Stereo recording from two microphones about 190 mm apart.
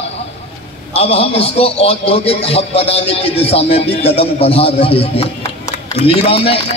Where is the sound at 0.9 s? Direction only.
30° left (ahead or behind).